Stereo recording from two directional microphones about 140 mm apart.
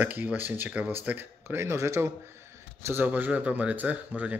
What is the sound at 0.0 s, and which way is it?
Speech, 10° right (ahead or behind).